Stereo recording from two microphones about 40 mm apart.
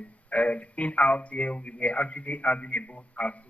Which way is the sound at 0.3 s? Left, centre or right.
Left.